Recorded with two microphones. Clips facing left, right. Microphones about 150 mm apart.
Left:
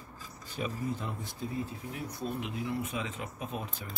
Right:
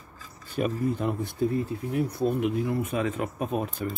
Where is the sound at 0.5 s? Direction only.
60° right (ahead or behind).